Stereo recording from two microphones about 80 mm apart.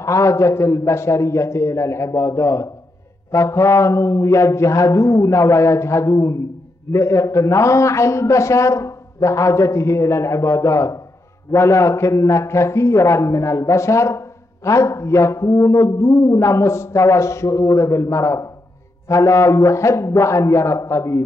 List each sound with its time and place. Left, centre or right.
0.0 s a man's voice: left